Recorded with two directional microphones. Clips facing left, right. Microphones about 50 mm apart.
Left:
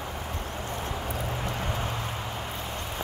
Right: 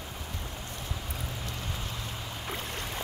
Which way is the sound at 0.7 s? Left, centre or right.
Left.